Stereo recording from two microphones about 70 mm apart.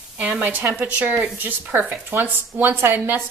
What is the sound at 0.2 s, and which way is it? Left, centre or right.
Speech, right.